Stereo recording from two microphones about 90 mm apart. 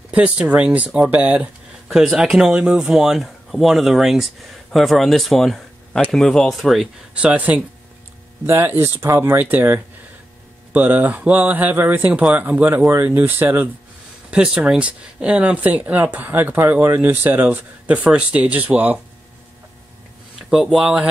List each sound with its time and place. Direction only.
0.1 s speech: 15° right (ahead or behind)
2.0 s speech: 5° right (ahead or behind)
7.2 s speech: 15° right (ahead or behind)
8.5 s speech: 25° right (ahead or behind)
14.3 s speech: 10° right (ahead or behind)
20.3 s speech: 5° right (ahead or behind)